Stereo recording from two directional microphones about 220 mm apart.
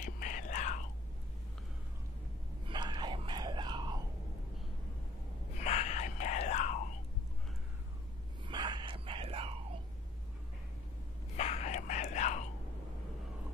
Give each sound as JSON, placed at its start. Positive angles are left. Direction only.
{"t": 0.0, "sound": "whispering", "side_deg": 35}
{"t": 2.7, "sound": "a sound", "side_deg": -20}
{"t": 5.6, "sound": "whispering", "side_deg": 30}
{"t": 8.5, "sound": "whispering", "side_deg": -20}
{"t": 11.3, "sound": "whispering", "side_deg": 30}